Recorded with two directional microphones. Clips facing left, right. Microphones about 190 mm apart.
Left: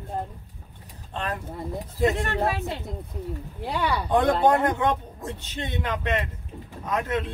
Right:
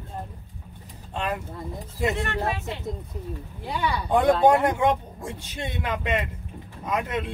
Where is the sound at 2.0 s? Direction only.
40° left (ahead or behind).